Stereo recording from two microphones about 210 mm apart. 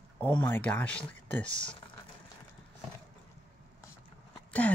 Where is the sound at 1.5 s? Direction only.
25° left (ahead or behind).